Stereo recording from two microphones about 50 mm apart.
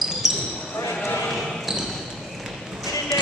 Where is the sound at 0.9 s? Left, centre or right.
Left.